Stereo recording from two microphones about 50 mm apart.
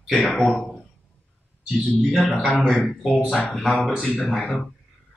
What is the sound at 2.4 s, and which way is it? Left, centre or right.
Speech, left.